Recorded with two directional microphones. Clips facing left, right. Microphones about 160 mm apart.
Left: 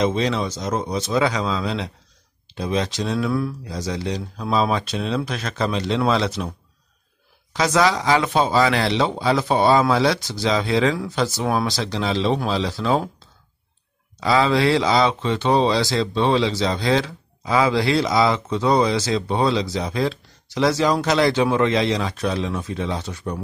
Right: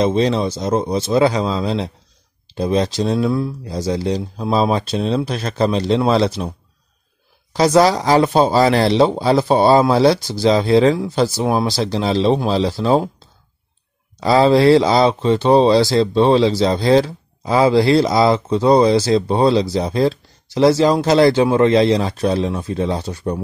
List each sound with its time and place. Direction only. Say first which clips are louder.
0.0 s speech: right 5 dB; 35° right (ahead or behind)
7.5 s speech: right 6 dB; 35° right (ahead or behind)
14.2 s speech: right 6 dB; 35° right (ahead or behind)